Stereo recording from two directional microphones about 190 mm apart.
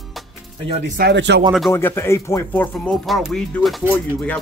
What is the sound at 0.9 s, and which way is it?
Speech, 60° right (ahead or behind).